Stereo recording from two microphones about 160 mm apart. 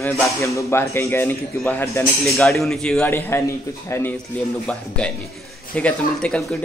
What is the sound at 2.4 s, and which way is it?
A man's voice, centre (ahead or behind).